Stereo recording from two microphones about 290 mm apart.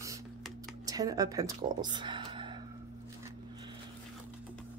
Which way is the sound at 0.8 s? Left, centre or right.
Centre.